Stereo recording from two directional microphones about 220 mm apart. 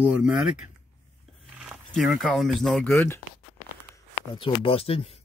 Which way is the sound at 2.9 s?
10° left (ahead or behind).